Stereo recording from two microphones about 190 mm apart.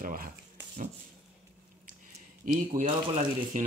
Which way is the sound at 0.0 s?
45° right (ahead or behind).